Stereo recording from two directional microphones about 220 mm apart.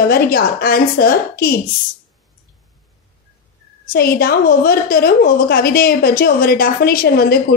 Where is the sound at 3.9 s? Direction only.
40° left (ahead or behind).